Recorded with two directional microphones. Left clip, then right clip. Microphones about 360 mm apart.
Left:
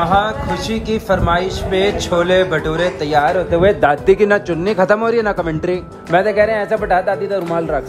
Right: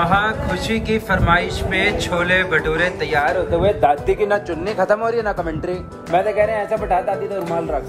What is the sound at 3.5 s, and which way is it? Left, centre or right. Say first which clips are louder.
Speech: left 3 dB; left.